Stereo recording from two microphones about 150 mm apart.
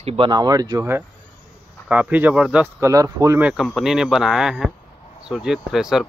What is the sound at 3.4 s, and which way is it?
Speech, centre (ahead or behind).